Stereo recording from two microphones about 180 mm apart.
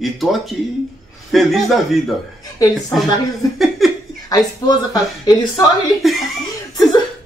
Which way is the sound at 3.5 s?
Centre (ahead or behind).